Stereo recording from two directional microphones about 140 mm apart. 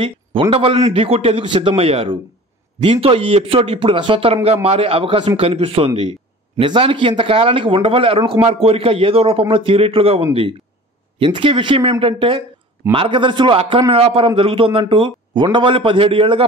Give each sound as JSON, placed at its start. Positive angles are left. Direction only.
{"t": 0.0, "sound": "a man's voice", "side_deg": -40}